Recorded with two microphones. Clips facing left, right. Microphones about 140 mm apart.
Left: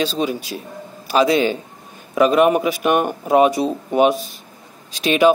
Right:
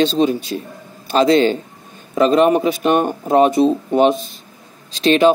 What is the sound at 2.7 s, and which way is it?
Speech, 10° left (ahead or behind).